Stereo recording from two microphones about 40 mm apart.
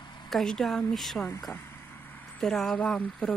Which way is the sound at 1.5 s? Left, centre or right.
Left.